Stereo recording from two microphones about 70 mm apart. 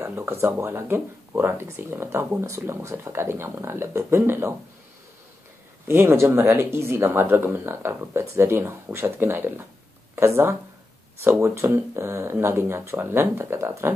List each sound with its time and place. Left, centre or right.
0.0 s speech: right
5.9 s speech: right